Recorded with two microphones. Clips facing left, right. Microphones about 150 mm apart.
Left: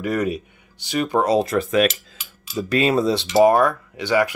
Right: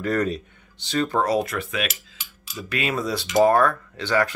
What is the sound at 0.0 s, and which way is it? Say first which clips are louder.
Speech: left 1 dB; 10° left (ahead or behind).